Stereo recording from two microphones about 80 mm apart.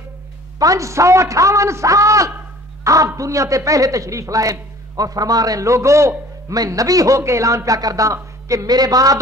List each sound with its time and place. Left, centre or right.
0.6 s a man's voice: right
6.5 s a man's voice: right